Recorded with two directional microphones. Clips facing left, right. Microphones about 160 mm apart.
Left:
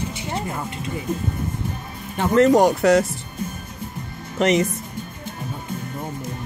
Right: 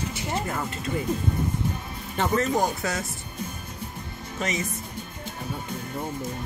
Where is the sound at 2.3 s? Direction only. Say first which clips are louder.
Left 11 dB; 80° left.